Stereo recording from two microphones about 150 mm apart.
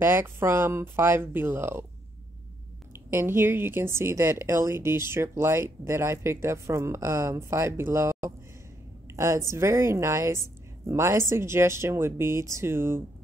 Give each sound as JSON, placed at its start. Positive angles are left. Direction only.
{"t": 0.0, "sound": "speech", "side_deg": -15}
{"t": 3.1, "sound": "a woman's voice", "side_deg": -15}